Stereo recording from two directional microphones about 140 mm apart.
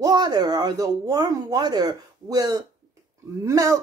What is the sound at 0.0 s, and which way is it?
Speech, 30° right (ahead or behind).